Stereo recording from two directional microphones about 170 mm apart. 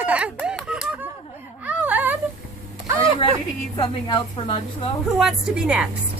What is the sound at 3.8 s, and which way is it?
A woman's voice, 25° left (ahead or behind).